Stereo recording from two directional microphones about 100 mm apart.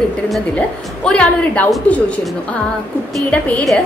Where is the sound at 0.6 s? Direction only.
10° left (ahead or behind).